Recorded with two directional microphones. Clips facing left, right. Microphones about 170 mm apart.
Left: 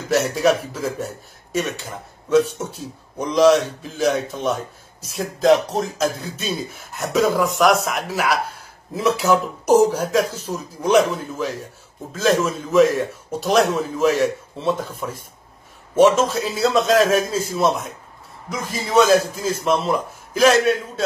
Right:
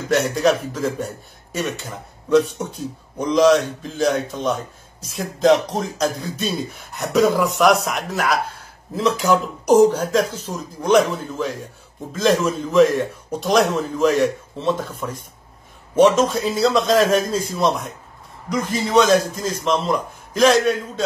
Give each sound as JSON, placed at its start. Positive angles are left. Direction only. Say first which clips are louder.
{"t": 0.1, "sound": "speech", "louder": "even", "side_deg": 5}